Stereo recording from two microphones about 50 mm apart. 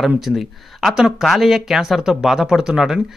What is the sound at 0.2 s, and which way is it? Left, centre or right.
Speech, centre.